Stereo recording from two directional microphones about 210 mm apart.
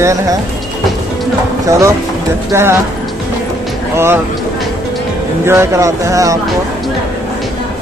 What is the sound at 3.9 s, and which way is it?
Speech, 10° right (ahead or behind).